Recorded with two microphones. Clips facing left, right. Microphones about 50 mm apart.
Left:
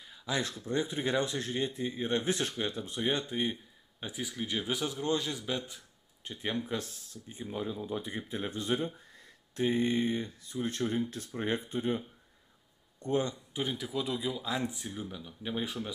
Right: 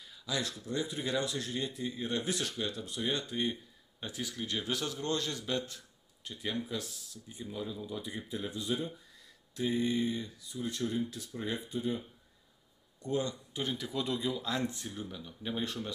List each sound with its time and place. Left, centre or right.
0.1 s speech: left; by 5.8 s centre
6.2 s speech: left
13.0 s speech: left; by 15.9 s centre